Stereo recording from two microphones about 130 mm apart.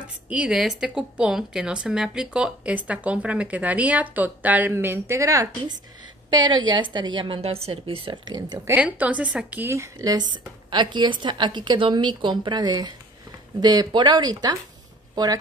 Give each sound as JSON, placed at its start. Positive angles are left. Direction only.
{"t": 0.3, "sound": "a woman's voice", "side_deg": -10}
{"t": 8.6, "sound": "a woman's voice", "side_deg": -10}